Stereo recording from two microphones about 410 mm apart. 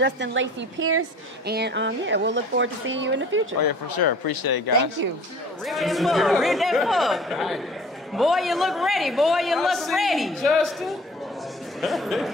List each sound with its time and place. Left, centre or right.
0.0 s a woman's voice: right
3.5 s speech: left
5.0 s speech: right
5.6 s a man's voice: centre